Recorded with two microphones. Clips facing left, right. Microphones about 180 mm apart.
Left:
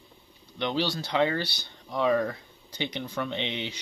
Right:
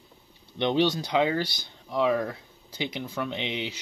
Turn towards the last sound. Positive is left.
turn(degrees=-5)  # may be behind; listen again after turning